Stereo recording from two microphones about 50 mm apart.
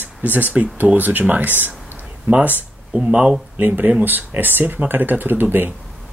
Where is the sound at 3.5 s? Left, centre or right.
Right.